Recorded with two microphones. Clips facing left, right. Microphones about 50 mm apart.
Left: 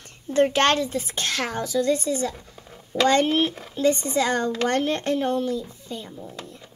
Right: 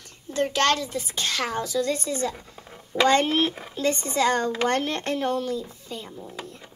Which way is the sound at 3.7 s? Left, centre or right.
Centre.